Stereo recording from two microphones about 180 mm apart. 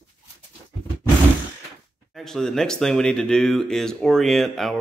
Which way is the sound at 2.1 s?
Centre (ahead or behind).